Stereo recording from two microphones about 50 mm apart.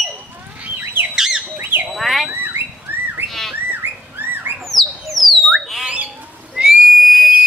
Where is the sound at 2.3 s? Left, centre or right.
Right.